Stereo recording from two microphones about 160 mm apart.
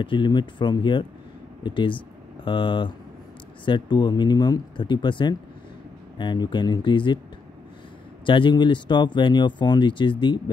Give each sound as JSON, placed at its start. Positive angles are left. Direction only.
{"t": 0.0, "sound": "speech", "side_deg": 30}
{"t": 8.3, "sound": "speech", "side_deg": 30}